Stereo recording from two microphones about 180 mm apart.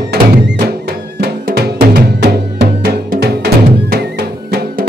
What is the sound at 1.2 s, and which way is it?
Music, 65° right (ahead or behind).